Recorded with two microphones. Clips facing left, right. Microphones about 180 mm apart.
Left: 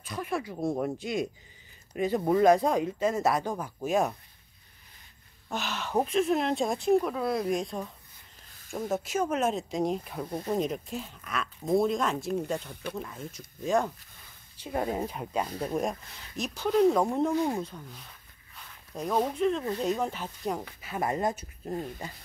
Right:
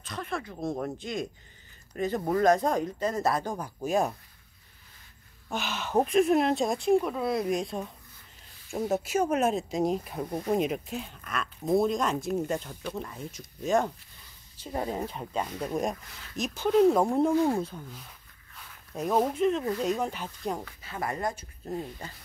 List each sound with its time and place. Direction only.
0.0 s speech: 10° left (ahead or behind)
5.5 s speech: centre (ahead or behind)
6.0 s speech: 10° right (ahead or behind)
10.1 s speech: 15° right (ahead or behind); by 15.4 s 10° left (ahead or behind)
15.4 s speech: 35° left (ahead or behind)
15.7 s speech: centre (ahead or behind)
20.6 s speech: 15° left (ahead or behind)